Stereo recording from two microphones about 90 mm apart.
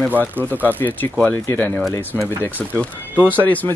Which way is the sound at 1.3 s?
25° left (ahead or behind).